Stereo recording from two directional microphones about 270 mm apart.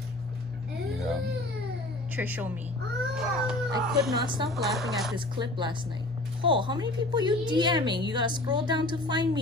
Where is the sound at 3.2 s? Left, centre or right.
Centre.